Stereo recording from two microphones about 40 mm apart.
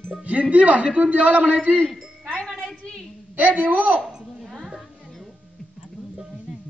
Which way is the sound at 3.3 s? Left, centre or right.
Right.